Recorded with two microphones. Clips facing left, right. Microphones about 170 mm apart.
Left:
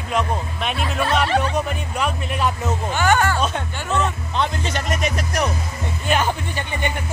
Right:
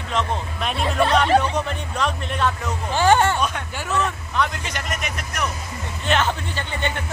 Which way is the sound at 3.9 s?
25° left (ahead or behind).